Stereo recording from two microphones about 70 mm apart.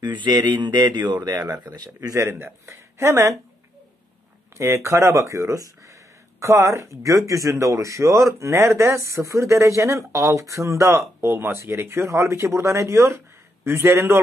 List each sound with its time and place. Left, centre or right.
0.0 s speech: right
2.2 s a man's voice: right
2.7 s a woman's voice: right
4.6 s a man's voice: right